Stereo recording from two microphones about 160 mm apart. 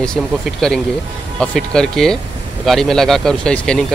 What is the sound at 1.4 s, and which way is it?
Speech, 5° left (ahead or behind).